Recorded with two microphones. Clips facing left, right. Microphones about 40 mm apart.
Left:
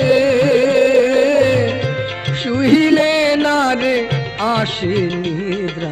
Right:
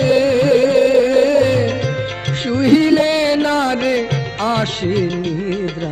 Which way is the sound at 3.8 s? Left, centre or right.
Left.